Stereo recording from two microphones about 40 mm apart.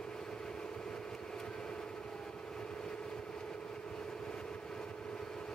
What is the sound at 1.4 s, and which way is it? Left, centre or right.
Vehicle, centre.